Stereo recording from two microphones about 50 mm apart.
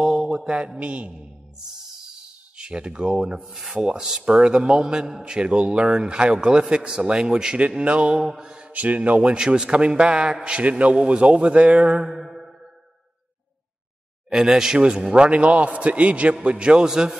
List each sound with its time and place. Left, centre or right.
0.0 s mantra: centre
0.3 s a man's voice: centre
2.5 s a man's voice: centre
3.5 s rub: centre
3.8 s a man's voice: centre
8.2 s mantra: centre
8.7 s a man's voice: right
11.9 s mantra: centre
14.3 s a man's voice: centre